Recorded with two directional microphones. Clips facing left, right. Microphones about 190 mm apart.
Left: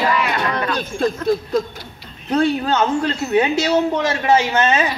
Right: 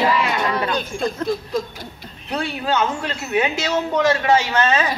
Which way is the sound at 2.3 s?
45° left (ahead or behind).